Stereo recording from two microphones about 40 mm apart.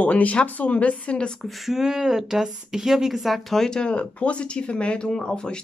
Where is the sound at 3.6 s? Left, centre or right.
Centre.